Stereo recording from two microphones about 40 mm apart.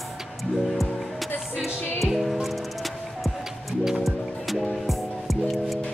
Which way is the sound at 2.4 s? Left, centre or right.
Centre.